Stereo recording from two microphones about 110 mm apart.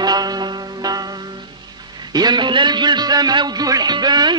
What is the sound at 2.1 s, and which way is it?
Music, 40° right (ahead or behind).